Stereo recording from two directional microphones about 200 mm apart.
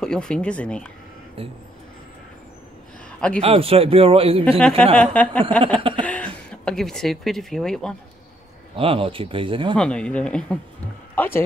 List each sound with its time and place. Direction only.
0.0 s speech: 5° left (ahead or behind)
1.4 s a man's voice: 30° right (ahead or behind)
3.1 s a sound: 5° left (ahead or behind)
3.3 s a man's voice: 30° right (ahead or behind)
4.6 s speech: 5° left (ahead or behind)
5.8 s a sound: 25° right (ahead or behind)
6.0 s speech: 5° left (ahead or behind)
8.7 s a man's voice: 30° right (ahead or behind)
9.8 s speech: 5° left (ahead or behind)